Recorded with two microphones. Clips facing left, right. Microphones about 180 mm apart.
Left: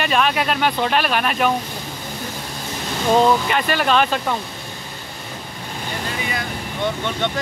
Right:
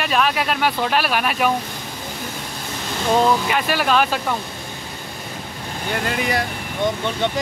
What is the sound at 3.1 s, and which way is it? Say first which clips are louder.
Speech: left 1 dB; centre (ahead or behind).